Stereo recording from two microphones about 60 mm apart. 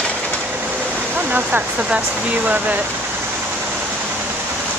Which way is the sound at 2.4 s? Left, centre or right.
Right.